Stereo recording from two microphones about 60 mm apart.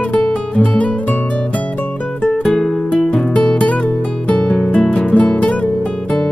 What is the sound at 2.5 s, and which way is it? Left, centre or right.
Music, centre.